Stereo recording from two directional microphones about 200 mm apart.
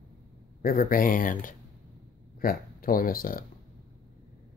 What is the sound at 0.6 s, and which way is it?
Speech, 45° left (ahead or behind).